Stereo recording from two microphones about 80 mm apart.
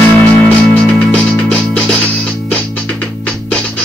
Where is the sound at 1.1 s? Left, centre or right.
Centre.